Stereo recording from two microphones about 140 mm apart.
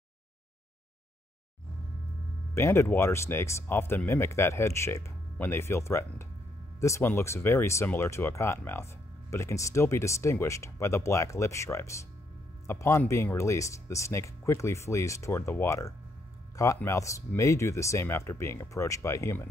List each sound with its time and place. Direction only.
2.5 s speech: 20° left (ahead or behind)